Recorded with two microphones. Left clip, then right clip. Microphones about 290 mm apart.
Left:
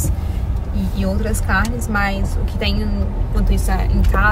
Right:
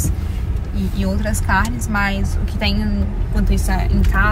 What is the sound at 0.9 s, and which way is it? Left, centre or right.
Speech, centre.